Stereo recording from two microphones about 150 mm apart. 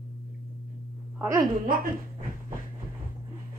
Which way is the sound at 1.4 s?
75° right (ahead or behind).